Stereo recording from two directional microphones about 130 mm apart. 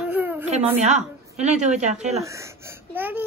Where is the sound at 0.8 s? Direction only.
60° right (ahead or behind).